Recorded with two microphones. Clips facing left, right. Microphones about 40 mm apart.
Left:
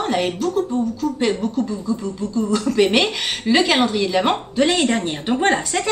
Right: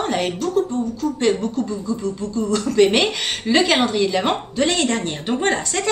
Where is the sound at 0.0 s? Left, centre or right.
Centre.